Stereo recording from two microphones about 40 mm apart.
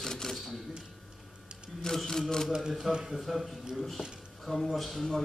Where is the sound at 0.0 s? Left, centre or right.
Centre.